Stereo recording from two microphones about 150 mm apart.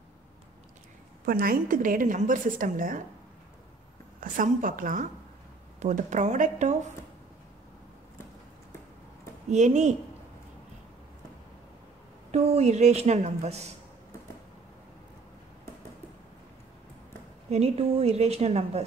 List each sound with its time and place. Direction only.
1.2 s a woman's voice: 80° right; by 3.0 s 65° right (ahead or behind)
4.2 s speech: 60° right (ahead or behind)
9.5 s a woman's voice: 50° right (ahead or behind)
12.3 s a woman's voice: 45° right (ahead or behind)
17.5 s a woman's voice: 45° right (ahead or behind)